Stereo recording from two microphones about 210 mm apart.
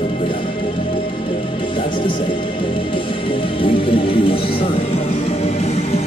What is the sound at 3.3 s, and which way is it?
Speech, 25° left (ahead or behind).